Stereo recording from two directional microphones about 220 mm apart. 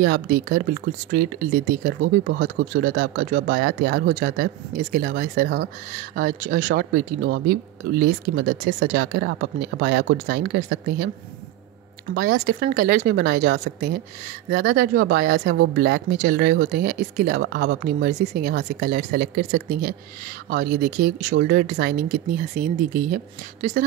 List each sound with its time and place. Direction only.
0.0 s speech: 45° right (ahead or behind)
12.1 s a woman's voice: 45° right (ahead or behind)